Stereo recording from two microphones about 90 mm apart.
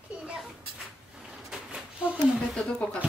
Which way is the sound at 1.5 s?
10° right (ahead or behind).